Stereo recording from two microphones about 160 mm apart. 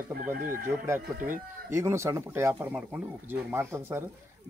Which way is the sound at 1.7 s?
15° right (ahead or behind).